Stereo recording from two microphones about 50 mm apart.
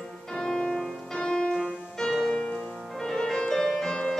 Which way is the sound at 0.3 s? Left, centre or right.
Centre.